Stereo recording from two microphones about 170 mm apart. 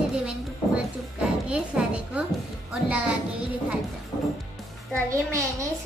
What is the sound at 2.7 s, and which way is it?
Speech, 5° right (ahead or behind).